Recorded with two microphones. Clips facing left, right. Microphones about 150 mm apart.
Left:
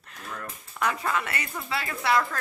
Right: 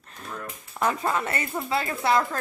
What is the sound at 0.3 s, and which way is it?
Speech, 30° right (ahead or behind).